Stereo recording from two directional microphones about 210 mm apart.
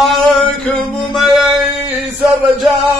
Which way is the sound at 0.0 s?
Centre (ahead or behind).